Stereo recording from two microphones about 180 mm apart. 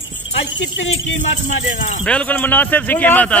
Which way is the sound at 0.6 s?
90° left.